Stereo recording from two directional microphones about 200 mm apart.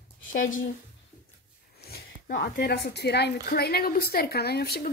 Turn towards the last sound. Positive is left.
turn(degrees=55)  # may be behind; listen again after turning